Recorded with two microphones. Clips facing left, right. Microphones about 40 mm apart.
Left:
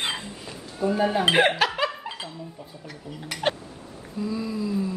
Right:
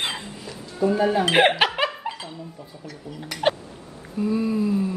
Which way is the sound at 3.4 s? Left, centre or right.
Centre.